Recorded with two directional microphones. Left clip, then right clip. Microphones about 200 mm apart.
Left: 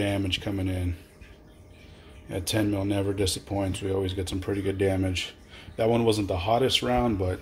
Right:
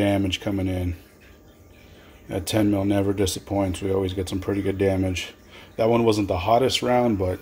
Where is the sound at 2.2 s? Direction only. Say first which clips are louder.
Right 5 dB; 15° right (ahead or behind).